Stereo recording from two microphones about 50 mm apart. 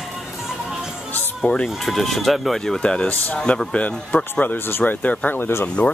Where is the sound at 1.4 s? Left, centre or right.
Centre.